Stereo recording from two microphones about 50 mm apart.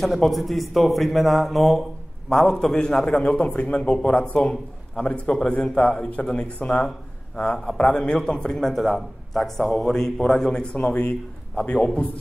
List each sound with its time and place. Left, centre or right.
0.0 s a man's voice: centre; by 6.9 s left
7.3 s a man's voice: centre
10.8 s speech: left